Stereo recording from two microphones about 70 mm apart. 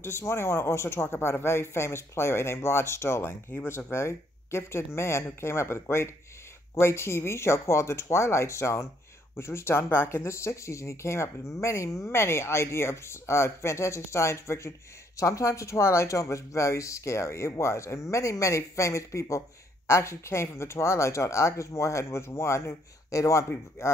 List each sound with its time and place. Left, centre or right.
0.0 s speech: left